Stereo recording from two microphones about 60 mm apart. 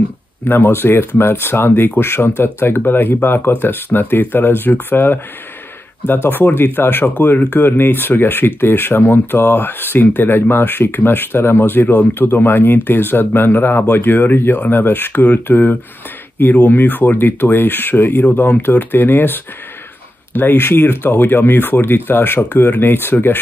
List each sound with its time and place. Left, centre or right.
0.5 s speech: left
18.2 s speech: left